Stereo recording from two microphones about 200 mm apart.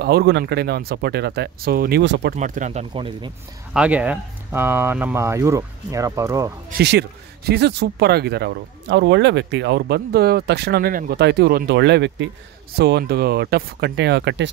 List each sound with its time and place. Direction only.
0.0 s speech: 55° right (ahead or behind)
2.3 s speech: 40° right (ahead or behind)
3.7 s speech: 5° right (ahead or behind)
6.7 s speech: 55° right (ahead or behind)